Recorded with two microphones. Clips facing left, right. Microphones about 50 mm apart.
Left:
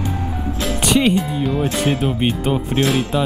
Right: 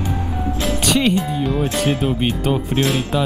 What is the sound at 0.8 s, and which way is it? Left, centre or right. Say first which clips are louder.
Speech: left 2 dB; centre.